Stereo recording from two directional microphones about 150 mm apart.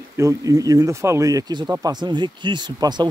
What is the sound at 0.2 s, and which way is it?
Speech, 20° right (ahead or behind).